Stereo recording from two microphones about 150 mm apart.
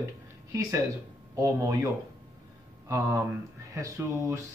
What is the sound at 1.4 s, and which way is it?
Speech, 20° right (ahead or behind).